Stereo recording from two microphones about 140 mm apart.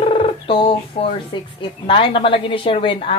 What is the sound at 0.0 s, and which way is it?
Speech, 40° left (ahead or behind).